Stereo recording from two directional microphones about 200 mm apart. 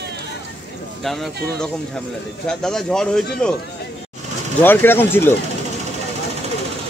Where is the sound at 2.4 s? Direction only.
5° left (ahead or behind).